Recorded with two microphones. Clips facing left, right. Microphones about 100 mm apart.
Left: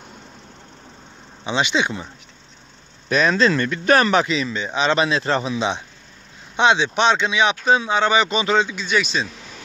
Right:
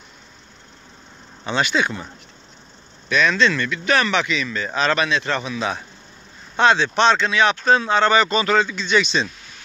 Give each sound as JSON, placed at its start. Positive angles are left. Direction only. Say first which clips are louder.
{"t": 1.4, "sound": "speech", "louder": "even", "side_deg": 20}
{"t": 3.1, "sound": "speech", "louder": "left 1 dB", "side_deg": 35}